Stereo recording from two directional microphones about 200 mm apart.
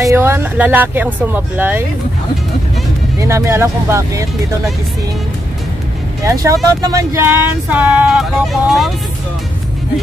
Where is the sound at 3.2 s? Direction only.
15° right (ahead or behind).